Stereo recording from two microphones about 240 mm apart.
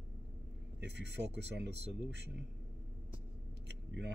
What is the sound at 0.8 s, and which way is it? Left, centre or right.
Speech, right.